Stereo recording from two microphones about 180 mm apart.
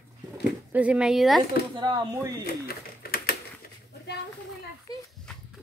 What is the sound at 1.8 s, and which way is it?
Speech, 20° right (ahead or behind).